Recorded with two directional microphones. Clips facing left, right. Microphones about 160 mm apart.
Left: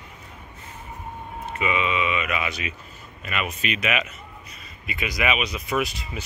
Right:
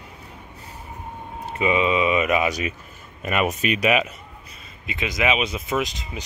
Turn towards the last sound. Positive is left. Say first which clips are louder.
# even
turn(degrees=-20)  # may be behind; listen again after turning